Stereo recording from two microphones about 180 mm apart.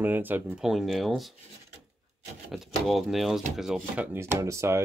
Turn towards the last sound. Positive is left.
turn(degrees=-15)  # may be behind; listen again after turning